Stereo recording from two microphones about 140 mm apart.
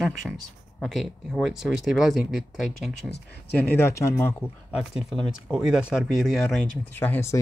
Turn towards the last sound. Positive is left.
turn(degrees=15)  # may be behind; listen again after turning